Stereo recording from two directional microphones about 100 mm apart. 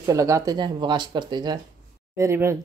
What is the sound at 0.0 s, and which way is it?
Speech, 35° right (ahead or behind).